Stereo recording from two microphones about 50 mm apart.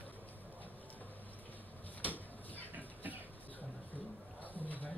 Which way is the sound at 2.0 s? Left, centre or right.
Left.